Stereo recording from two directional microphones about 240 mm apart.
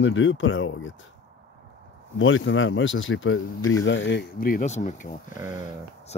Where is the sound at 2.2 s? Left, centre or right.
Left.